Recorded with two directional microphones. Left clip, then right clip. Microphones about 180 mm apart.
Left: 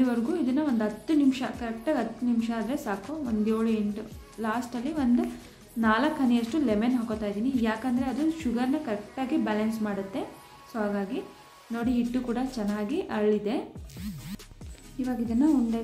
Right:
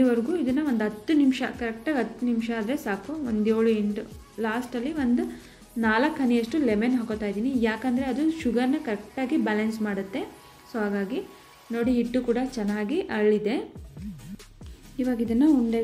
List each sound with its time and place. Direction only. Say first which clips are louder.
0.0 s a woman's voice: right 4 dB; centre (ahead or behind)
15.0 s a woman's voice: right 3 dB; 15° right (ahead or behind)